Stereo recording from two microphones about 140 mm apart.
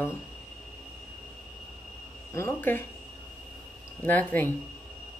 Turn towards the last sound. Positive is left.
turn(degrees=10)  # may be behind; listen again after turning